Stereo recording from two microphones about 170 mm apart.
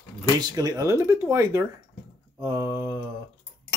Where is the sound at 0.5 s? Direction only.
20° right (ahead or behind).